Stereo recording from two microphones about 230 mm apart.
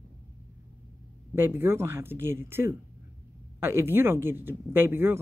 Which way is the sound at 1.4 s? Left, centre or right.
Centre.